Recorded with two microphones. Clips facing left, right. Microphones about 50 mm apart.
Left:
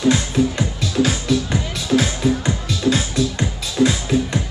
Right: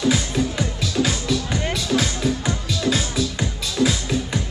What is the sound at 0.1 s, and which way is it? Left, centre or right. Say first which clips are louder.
Music: left 4 dB; centre.